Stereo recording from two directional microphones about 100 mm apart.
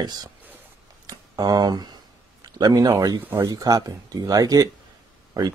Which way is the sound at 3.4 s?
40° right (ahead or behind).